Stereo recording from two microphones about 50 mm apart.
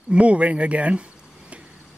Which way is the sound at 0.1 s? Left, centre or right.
Right.